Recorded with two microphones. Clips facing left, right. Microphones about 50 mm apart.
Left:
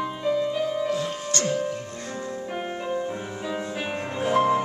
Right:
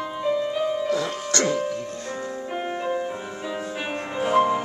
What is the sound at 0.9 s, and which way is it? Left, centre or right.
Music, right.